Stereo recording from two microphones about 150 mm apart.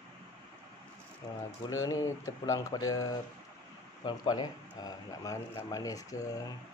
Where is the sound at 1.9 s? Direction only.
20° left (ahead or behind).